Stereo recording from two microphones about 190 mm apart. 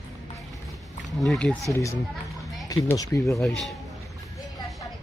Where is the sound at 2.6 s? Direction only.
20° left (ahead or behind).